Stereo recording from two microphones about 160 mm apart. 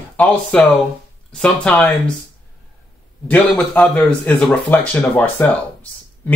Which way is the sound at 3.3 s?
10° left (ahead or behind).